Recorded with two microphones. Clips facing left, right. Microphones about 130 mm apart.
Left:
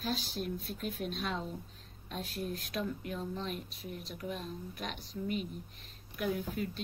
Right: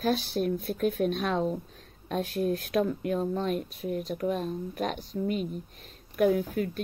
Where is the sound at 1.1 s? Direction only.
55° right (ahead or behind).